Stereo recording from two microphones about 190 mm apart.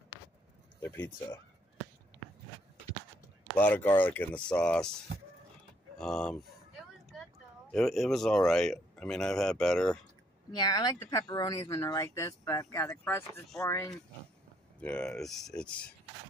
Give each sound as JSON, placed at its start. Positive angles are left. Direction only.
{"t": 0.7, "sound": "speech", "side_deg": 10}
{"t": 3.5, "sound": "speech", "side_deg": 10}
{"t": 5.9, "sound": "speech", "side_deg": 5}
{"t": 7.7, "sound": "speech", "side_deg": 0}
{"t": 10.5, "sound": "speech", "side_deg": 20}